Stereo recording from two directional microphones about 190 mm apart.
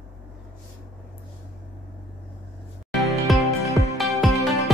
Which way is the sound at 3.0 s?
Centre (ahead or behind).